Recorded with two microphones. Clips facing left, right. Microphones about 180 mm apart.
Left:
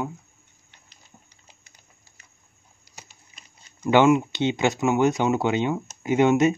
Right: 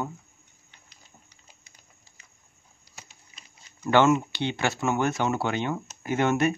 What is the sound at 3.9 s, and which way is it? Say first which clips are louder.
Speech: left 3 dB; 15° left (ahead or behind).